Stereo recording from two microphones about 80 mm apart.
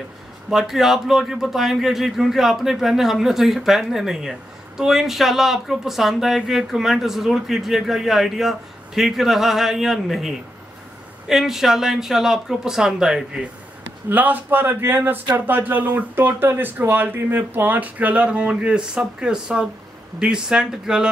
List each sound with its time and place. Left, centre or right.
0.5 s speech: centre
14.0 s speech: right